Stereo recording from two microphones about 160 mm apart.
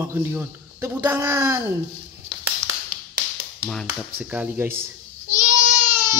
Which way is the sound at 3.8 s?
10° right (ahead or behind).